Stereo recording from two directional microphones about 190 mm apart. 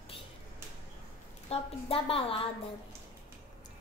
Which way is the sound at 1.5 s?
30° left (ahead or behind).